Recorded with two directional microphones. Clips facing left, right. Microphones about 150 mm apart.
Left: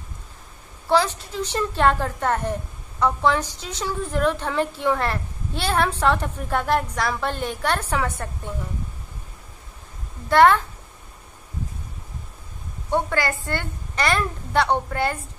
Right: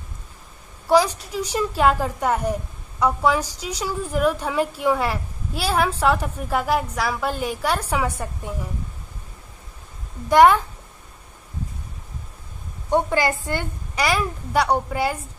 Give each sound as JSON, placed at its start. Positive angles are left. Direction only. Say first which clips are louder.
{"t": 0.8, "sound": "a woman's voice", "louder": "right 3 dB", "side_deg": -10}
{"t": 10.3, "sound": "a woman's voice", "louder": "right 2 dB", "side_deg": -15}
{"t": 12.9, "sound": "a woman's voice", "louder": "right 3 dB", "side_deg": -15}